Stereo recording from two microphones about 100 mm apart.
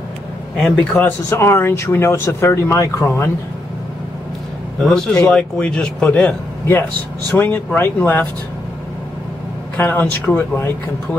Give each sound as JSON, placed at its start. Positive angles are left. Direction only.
{"t": 0.6, "sound": "a man's voice", "side_deg": 5}
{"t": 0.9, "sound": "speech", "side_deg": 25}
{"t": 4.8, "sound": "speech", "side_deg": 5}
{"t": 9.8, "sound": "speech", "side_deg": 15}